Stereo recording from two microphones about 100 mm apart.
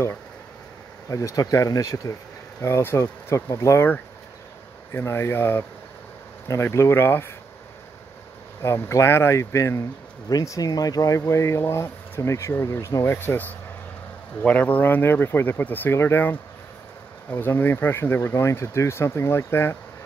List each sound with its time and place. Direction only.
1.0 s speech: 35° left (ahead or behind)
8.6 s speech: 25° left (ahead or behind)